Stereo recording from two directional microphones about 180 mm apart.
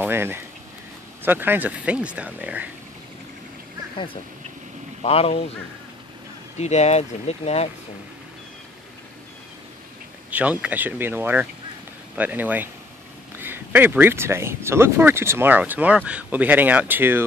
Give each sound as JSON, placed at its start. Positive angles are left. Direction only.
{"t": 0.0, "sound": "speech", "side_deg": -10}
{"t": 3.9, "sound": "speech", "side_deg": 30}
{"t": 6.6, "sound": "speech", "side_deg": 40}
{"t": 10.3, "sound": "speech", "side_deg": -10}